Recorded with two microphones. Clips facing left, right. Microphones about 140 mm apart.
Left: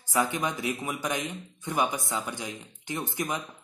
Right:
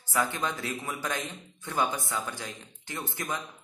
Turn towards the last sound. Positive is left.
turn(degrees=20)  # may be behind; listen again after turning